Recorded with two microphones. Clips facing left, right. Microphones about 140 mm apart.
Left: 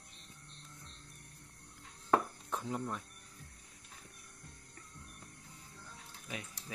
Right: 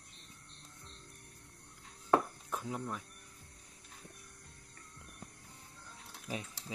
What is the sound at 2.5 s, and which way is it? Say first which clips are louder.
Speech: left 1 dB; centre (ahead or behind).